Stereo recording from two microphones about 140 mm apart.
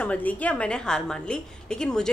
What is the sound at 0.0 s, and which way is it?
A woman's voice, 10° left (ahead or behind).